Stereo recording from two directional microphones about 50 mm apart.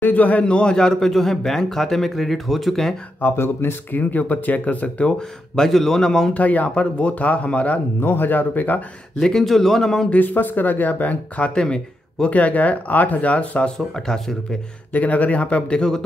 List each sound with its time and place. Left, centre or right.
0.0 s a man's voice: left; by 3.0 s centre
3.3 s speech: left
3.9 s speech: left
5.6 s a man's voice: centre
6.3 s speech: left
8.0 s speech: left
9.2 s a man's voice: centre
10.0 s speech: left
11.5 s speech: centre
12.3 s speech: left
13.7 s a man's voice: centre
14.9 s speech: left